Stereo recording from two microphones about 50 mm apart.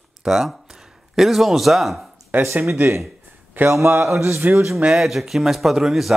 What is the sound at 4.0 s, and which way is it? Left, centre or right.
Speech, right.